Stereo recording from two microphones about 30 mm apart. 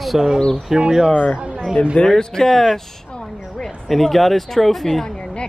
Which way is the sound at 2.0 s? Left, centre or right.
Left.